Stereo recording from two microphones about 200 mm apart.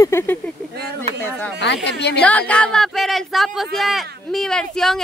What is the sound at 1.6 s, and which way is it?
Speech, 60° left (ahead or behind).